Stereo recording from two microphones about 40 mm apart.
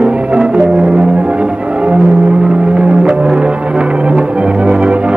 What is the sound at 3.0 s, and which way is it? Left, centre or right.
Music, right.